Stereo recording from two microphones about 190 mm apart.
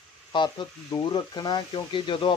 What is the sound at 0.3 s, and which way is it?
Speech, 25° left (ahead or behind).